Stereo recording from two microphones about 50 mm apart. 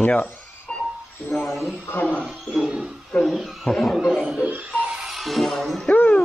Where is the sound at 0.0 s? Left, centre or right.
Left.